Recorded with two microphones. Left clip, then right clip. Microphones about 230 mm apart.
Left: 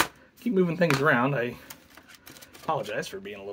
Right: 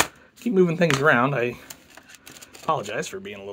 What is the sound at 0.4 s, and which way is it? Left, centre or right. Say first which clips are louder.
Speech: right 4 dB; right.